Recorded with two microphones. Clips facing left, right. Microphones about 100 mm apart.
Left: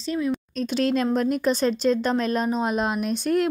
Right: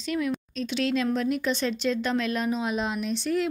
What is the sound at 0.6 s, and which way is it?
A woman's voice, 45° left (ahead or behind).